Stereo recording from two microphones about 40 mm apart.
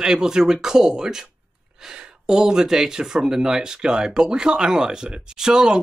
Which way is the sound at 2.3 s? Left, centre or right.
Centre.